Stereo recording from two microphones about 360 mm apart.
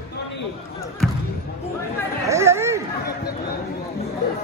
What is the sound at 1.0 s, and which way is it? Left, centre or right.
Basketball bounce, centre.